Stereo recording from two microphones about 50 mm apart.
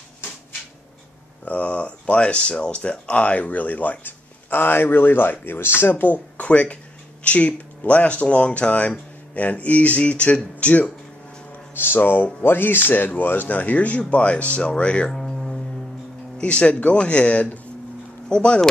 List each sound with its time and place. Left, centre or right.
1.4 s speech: left
11.7 s speech: left
15.0 s music: centre
16.3 s speech: left